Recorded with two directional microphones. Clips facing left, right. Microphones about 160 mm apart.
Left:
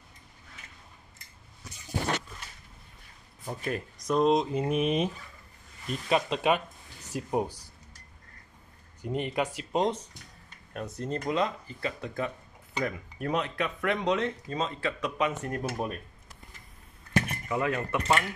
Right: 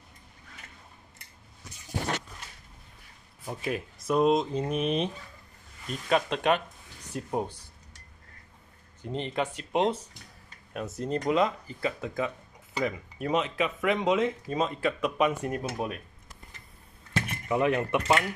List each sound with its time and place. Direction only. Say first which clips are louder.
3.4 s speech: right 1 dB; 5° right (ahead or behind)
9.0 s speech: left 1 dB; 10° left (ahead or behind)
9.7 s speech: right 4 dB; 5° right (ahead or behind)
17.5 s speech: right 4 dB; 20° right (ahead or behind)